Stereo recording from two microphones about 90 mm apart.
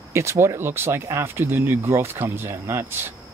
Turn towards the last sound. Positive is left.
turn(degrees=-25)  # may be behind; listen again after turning